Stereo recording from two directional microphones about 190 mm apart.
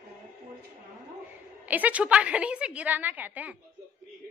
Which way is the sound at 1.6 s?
10° right (ahead or behind).